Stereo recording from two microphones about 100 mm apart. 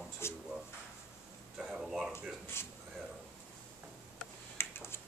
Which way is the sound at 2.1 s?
25° left (ahead or behind).